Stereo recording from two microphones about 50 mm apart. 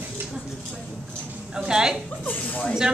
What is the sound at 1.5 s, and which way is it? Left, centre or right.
Speech, centre.